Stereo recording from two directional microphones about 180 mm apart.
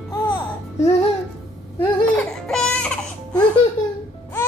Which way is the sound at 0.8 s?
35° left (ahead or behind).